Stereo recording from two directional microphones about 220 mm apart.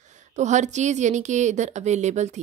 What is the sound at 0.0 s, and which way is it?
A woman's voice, 35° right (ahead or behind).